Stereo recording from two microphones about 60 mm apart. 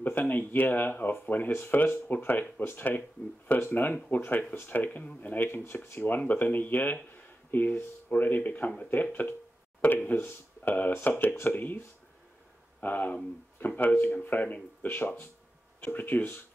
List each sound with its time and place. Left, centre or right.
0.0 s speech: left
12.8 s speech: left